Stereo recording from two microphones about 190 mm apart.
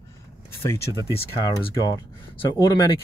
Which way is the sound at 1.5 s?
20° left (ahead or behind).